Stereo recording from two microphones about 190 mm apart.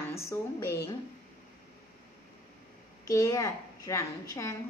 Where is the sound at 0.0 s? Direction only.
15° left (ahead or behind).